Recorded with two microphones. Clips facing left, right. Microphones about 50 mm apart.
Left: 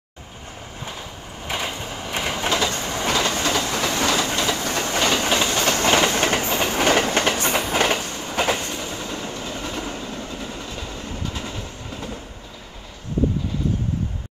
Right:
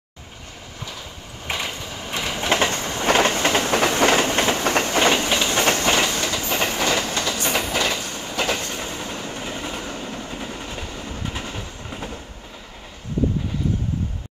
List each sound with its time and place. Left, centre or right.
1.5 s train: left
2.5 s train: right
5.2 s train: left
5.5 s train: right
5.8 s train: left
8.7 s train: right
9.8 s train: left
10.0 s train: right